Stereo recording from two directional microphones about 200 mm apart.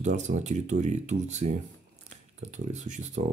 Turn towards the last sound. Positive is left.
turn(degrees=-35)  # may be behind; listen again after turning